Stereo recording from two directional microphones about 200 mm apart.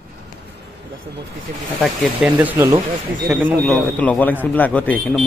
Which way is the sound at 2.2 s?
10° right (ahead or behind).